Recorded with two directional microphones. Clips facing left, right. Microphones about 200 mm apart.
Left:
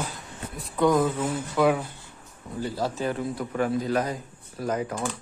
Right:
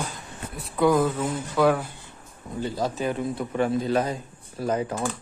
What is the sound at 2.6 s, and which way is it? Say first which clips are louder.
A man's voice: right 1 dB; 15° right (ahead or behind).